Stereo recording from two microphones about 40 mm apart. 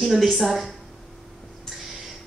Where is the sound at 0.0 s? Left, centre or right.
Centre.